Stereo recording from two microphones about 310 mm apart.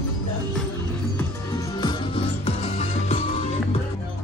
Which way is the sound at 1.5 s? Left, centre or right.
Centre.